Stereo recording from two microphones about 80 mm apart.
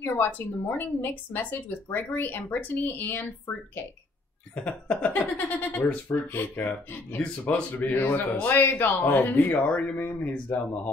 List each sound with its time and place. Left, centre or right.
0.0 s a woman's voice: left
9.7 s speech: centre
9.9 s a woman's voice: left